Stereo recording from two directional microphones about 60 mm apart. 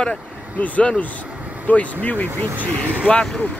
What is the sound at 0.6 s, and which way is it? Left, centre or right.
Speech, left.